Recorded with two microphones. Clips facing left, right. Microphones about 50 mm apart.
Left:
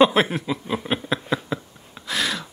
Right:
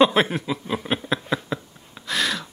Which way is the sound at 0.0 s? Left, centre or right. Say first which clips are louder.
Left 1 dB; centre.